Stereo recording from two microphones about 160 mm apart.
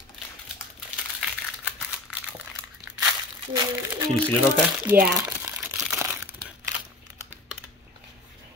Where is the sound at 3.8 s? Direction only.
15° right (ahead or behind).